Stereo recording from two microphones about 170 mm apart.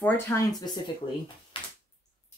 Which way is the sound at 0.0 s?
20° left (ahead or behind).